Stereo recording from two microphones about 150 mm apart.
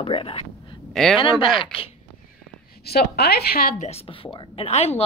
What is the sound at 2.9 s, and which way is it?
Speech, 90° left.